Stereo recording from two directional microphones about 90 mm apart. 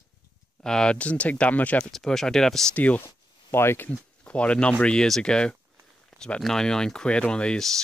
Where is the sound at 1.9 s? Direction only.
5° left (ahead or behind).